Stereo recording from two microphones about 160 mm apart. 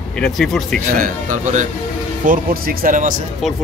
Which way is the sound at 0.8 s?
55° right (ahead or behind).